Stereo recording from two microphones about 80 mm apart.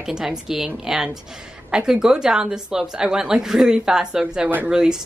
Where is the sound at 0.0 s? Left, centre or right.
Centre.